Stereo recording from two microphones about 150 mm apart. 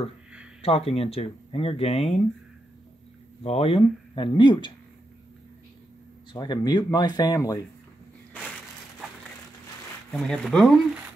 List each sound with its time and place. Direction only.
0.6 s speech: 40° left (ahead or behind)
3.4 s speech: 40° left (ahead or behind)
6.3 s speech: 30° left (ahead or behind)
10.1 s speech: 5° left (ahead or behind)